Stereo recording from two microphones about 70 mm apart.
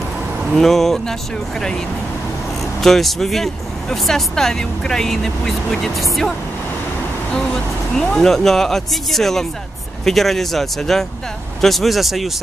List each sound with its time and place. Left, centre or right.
0.5 s speech: centre
2.8 s speech: centre
7.3 s speech: centre